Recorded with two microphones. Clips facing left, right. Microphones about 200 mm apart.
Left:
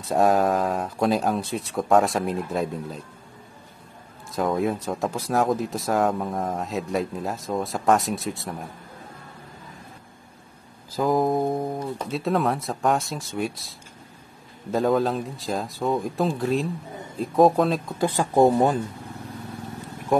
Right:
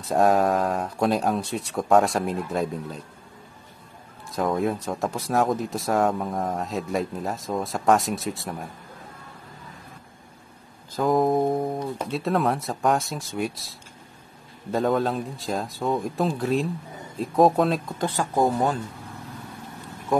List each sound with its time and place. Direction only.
0.0 s speech: centre (ahead or behind)
4.3 s speech: centre (ahead or behind)
11.0 s speech: centre (ahead or behind)
18.0 s speech: 15° left (ahead or behind)